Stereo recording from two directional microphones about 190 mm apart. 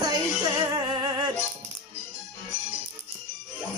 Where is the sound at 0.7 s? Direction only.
20° right (ahead or behind).